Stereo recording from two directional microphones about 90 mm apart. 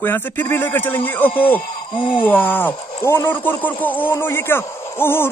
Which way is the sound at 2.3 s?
20° left (ahead or behind).